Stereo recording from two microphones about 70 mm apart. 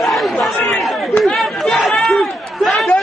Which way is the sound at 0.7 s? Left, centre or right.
Centre.